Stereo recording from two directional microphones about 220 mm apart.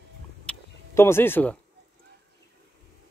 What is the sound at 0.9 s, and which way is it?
Speech, 10° left (ahead or behind).